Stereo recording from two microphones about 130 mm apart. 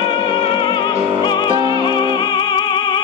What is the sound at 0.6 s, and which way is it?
Music, 35° left (ahead or behind).